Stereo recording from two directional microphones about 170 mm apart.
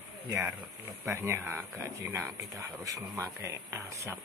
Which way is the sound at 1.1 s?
15° right (ahead or behind).